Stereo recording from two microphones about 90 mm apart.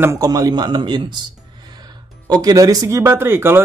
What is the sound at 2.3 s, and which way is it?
Speech, 50° right (ahead or behind).